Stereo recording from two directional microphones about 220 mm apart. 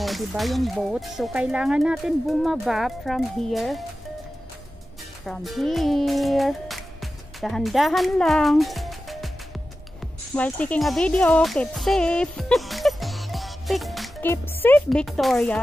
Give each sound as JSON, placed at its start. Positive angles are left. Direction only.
{"t": 0.0, "sound": "speech", "side_deg": 0}
{"t": 5.2, "sound": "music", "side_deg": 0}
{"t": 10.3, "sound": "music", "side_deg": 5}
{"t": 14.3, "sound": "speech", "side_deg": 10}